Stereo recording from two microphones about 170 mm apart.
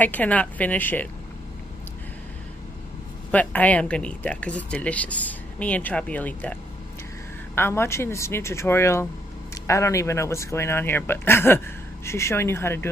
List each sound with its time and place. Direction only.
0.0 s speech: 10° left (ahead or behind)
3.3 s speech: 10° left (ahead or behind)